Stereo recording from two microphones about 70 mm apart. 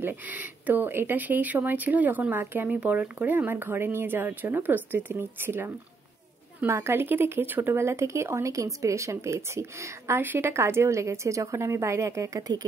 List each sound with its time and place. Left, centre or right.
0.0 s speech: right
6.7 s a woman's voice: right